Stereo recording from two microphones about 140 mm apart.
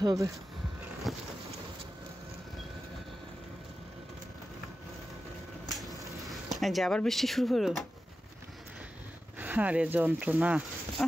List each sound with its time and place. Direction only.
0.0 s speech: 25° right (ahead or behind)
1.1 s boat: centre (ahead or behind)
5.7 s a sound: centre (ahead or behind)
9.4 s speech: 10° right (ahead or behind)